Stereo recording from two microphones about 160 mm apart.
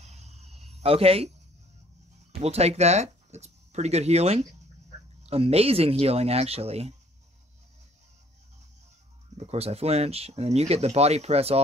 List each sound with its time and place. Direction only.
0.0 s a sound: 45° right (ahead or behind)
2.3 s speech: 40° right (ahead or behind)
9.4 s speech: 40° right (ahead or behind)